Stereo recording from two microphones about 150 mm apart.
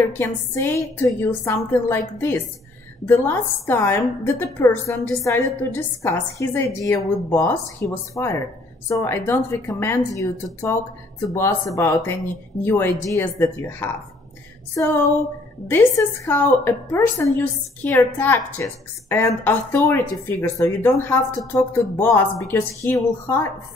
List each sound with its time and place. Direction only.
0.2 s a woman's voice: 15° left (ahead or behind)